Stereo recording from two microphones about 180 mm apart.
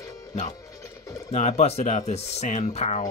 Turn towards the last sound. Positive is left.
turn(degrees=40)  # may be behind; listen again after turning